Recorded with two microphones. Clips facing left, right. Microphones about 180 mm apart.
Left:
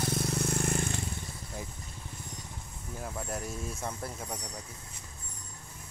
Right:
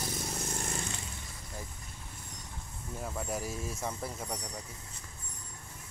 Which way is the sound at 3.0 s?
Centre (ahead or behind).